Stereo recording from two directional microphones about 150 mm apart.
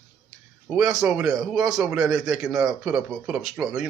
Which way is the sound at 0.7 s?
5° right (ahead or behind).